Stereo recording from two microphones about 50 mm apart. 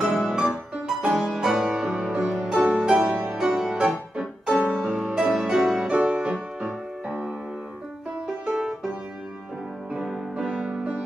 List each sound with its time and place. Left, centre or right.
0.0 s music: centre
6.0 s music: right
6.6 s music: centre
8.5 s music: centre
10.3 s music: centre